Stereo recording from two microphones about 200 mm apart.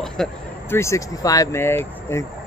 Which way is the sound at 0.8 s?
15° left (ahead or behind).